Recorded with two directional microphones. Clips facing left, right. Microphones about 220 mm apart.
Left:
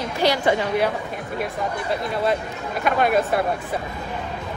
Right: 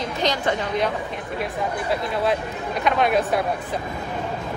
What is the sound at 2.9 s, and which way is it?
Speech, centre (ahead or behind).